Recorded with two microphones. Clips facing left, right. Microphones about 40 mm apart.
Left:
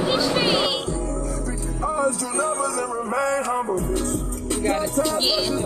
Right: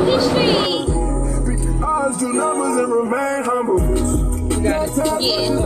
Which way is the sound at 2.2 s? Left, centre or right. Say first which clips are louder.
Right 5 dB; right.